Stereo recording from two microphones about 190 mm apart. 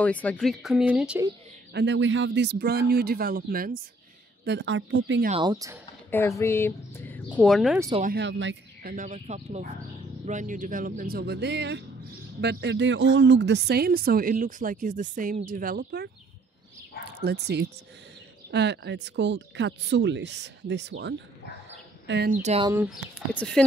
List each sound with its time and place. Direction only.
0.0 s speech: 10° left (ahead or behind)
1.7 s a man's voice: 65° right (ahead or behind); by 3.8 s 50° right (ahead or behind)
4.5 s speech: 75° right (ahead or behind)
5.3 s speech: 20° right (ahead or behind)
6.0 s speech: 15° left (ahead or behind)
7.3 s speech: centre (ahead or behind)
8.0 s speech: 60° right (ahead or behind)
8.8 s speech: 40° right (ahead or behind)
17.2 s a man's voice: 60° right (ahead or behind)
22.3 s speech: 35° right (ahead or behind)
22.8 s speech: centre (ahead or behind)